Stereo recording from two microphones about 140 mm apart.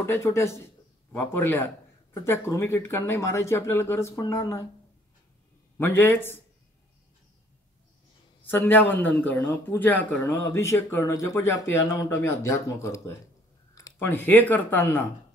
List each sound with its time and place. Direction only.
0.0 s speech: 20° left (ahead or behind)
5.8 s speech: 15° left (ahead or behind)
8.5 s speech: 15° left (ahead or behind)